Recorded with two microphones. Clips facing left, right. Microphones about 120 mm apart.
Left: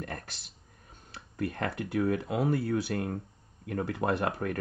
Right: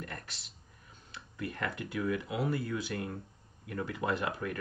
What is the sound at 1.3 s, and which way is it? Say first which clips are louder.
Speech: left 5 dB; 45° left (ahead or behind).